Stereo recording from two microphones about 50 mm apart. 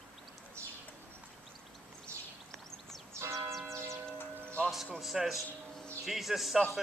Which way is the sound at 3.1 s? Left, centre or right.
Right.